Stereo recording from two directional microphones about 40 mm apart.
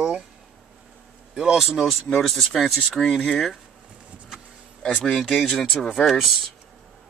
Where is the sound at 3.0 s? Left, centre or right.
Centre.